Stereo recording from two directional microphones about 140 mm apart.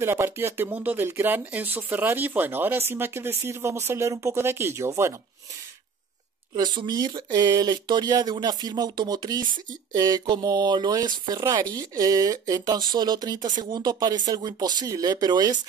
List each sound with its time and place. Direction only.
0.0 s speech: 15° right (ahead or behind)
6.5 s speech: 30° right (ahead or behind)